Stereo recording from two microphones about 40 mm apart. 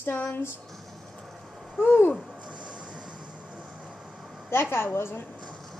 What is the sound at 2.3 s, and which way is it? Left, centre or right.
Train, right.